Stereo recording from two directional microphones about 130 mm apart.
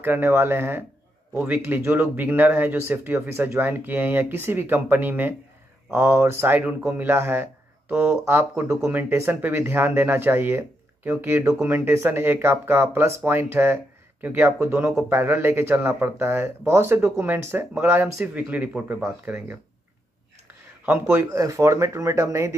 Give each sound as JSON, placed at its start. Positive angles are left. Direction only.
{"t": 0.0, "sound": "speech", "side_deg": -15}